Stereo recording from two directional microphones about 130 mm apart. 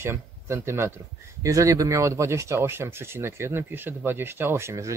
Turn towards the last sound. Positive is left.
turn(degrees=-20)  # may be behind; listen again after turning